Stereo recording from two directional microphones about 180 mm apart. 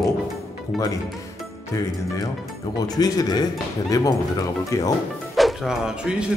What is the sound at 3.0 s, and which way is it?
Speech, 20° left (ahead or behind).